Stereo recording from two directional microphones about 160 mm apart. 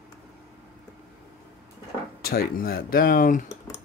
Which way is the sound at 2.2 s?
70° left (ahead or behind).